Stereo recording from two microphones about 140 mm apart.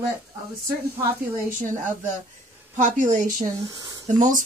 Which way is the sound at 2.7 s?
60° right (ahead or behind).